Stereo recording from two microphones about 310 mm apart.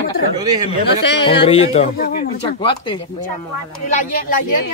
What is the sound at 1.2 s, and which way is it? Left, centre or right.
Speech, centre.